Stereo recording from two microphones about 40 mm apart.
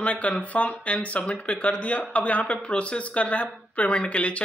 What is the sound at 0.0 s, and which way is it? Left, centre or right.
A man's voice, left.